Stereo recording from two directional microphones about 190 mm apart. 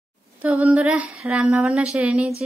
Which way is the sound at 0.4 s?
10° right (ahead or behind).